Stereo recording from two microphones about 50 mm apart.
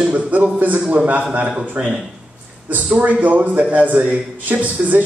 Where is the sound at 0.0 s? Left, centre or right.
Right.